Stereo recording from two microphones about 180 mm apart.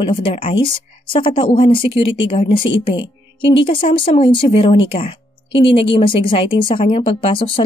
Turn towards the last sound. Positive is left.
turn(degrees=30)  # may be behind; listen again after turning